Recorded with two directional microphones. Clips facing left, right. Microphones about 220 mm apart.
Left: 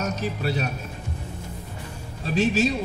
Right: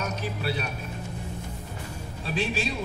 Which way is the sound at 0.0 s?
45° left (ahead or behind).